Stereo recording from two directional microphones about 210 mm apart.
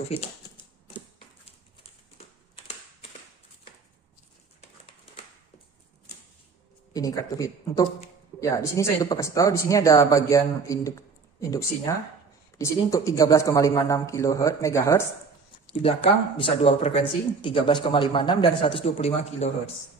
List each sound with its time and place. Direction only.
1.8 s a sound: 30° left (ahead or behind)
6.9 s speech: 15° left (ahead or behind)
15.6 s speech: 25° left (ahead or behind)